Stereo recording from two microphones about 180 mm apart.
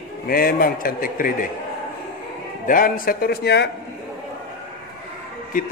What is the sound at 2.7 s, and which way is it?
A man's voice, 50° left (ahead or behind).